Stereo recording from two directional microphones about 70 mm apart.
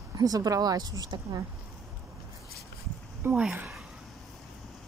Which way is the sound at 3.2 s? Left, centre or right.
Right.